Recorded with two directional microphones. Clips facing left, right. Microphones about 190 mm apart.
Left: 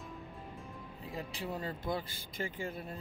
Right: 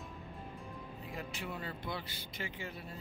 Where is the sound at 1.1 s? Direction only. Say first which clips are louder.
Left 4 dB; 35° left (ahead or behind).